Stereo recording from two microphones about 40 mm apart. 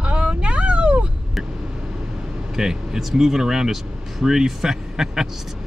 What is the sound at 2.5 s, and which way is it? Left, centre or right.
Speech, centre.